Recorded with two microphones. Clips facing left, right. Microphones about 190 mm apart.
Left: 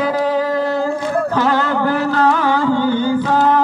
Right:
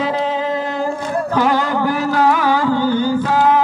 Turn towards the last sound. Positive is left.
turn(degrees=-10)  # may be behind; listen again after turning